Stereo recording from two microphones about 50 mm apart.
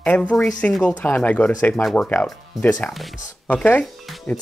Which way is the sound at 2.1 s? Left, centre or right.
Left.